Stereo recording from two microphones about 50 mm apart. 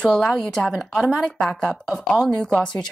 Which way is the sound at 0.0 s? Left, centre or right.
Centre.